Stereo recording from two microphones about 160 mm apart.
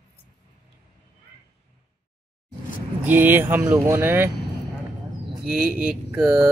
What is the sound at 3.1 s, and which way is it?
Speech, 10° right (ahead or behind).